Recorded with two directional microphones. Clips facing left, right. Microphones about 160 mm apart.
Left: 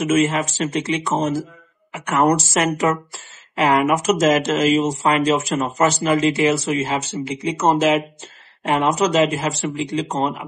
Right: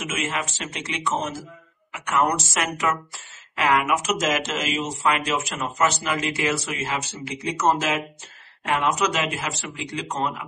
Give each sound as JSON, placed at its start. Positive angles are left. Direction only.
{"t": 0.0, "sound": "speech", "side_deg": 40}